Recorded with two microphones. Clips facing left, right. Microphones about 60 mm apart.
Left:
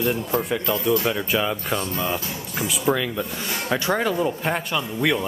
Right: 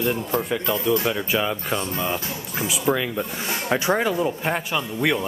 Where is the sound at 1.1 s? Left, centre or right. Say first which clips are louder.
Even; centre.